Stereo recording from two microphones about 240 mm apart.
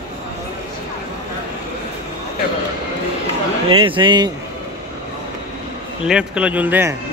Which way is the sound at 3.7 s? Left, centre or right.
Right.